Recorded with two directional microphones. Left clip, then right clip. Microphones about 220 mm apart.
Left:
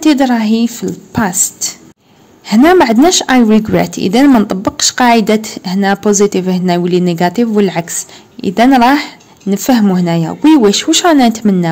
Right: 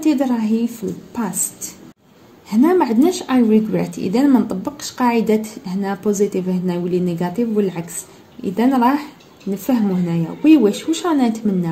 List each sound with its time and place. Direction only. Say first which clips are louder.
0.0 s speech: left 8 dB; 35° left (ahead or behind)